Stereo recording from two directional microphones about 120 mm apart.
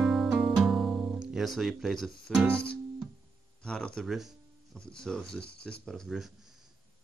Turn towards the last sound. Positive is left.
turn(degrees=0)  # may be behind; listen again after turning